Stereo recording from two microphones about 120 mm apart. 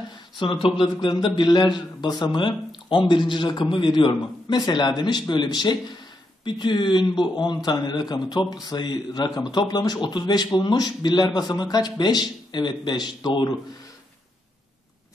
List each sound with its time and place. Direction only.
0.4 s a man's voice: 45° left (ahead or behind)